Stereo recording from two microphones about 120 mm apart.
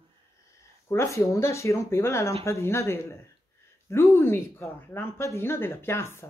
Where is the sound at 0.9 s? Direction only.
25° left (ahead or behind).